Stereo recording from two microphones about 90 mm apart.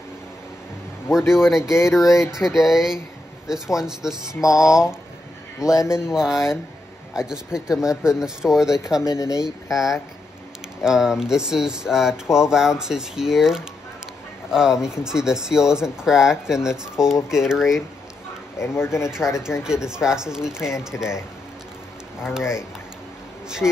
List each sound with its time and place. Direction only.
1.1 s a sound: 5° right (ahead or behind)
1.7 s speech: 30° left (ahead or behind)
2.3 s a sound: 5° right (ahead or behind)
3.4 s speech: 5° right (ahead or behind)
4.5 s a sound: 5° right (ahead or behind)
5.6 s speech: 35° left (ahead or behind)
5.9 s speech: 5° right (ahead or behind)
9.0 s speech: 35° left (ahead or behind)
9.4 s a sound: 5° right (ahead or behind)
10.8 s speech: 5° right (ahead or behind)
18.6 s speech: 30° left (ahead or behind)
19.0 s speech: 5° right (ahead or behind)